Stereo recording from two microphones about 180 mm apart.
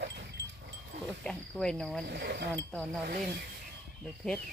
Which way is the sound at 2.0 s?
65° right (ahead or behind).